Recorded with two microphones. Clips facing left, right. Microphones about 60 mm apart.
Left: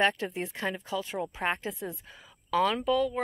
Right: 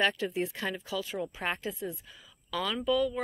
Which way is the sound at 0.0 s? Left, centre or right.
Left.